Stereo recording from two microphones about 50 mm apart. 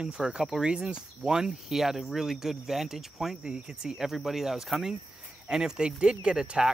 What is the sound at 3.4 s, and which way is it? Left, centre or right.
Speech, centre.